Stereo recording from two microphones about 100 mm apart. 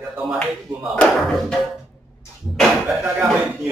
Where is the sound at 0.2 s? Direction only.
Centre (ahead or behind).